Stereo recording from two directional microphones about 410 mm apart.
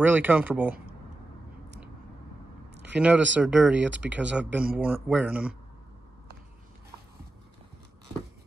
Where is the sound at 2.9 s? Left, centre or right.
Centre.